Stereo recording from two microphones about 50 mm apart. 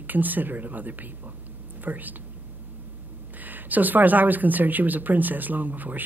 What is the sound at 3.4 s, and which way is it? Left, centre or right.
Speech, right.